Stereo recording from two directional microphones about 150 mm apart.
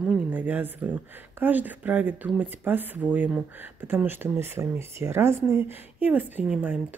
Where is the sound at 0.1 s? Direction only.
10° right (ahead or behind).